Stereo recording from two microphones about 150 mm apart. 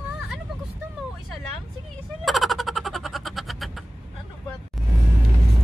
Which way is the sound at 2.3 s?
Centre (ahead or behind).